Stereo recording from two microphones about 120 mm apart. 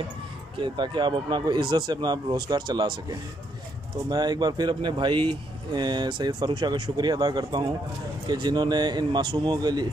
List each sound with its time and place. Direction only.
0.6 s speech: 40° right (ahead or behind)